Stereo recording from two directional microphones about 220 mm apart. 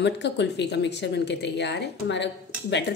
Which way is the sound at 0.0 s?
50° left (ahead or behind).